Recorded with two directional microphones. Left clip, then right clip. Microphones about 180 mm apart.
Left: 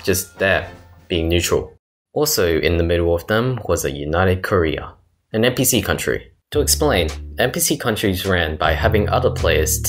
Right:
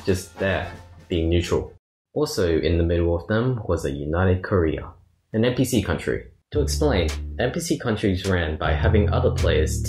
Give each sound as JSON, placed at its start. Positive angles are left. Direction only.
{"t": 0.0, "sound": "speech", "side_deg": 15}